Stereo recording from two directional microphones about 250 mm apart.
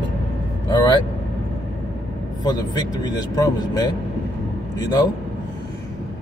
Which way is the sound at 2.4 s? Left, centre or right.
Centre.